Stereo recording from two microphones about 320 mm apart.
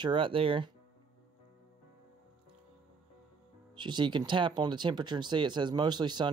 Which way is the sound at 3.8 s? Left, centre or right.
Centre.